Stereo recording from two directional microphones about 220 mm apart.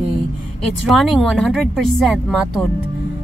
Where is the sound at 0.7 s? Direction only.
Centre (ahead or behind).